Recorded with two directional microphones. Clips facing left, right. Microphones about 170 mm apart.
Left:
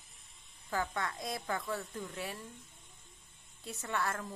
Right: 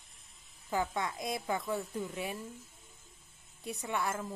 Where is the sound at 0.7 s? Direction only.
15° right (ahead or behind).